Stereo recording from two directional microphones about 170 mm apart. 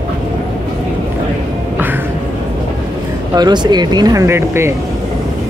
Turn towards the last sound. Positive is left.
turn(degrees=-15)  # may be behind; listen again after turning